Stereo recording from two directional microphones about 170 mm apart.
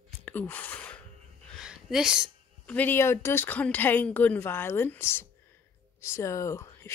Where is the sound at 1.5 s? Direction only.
5° right (ahead or behind).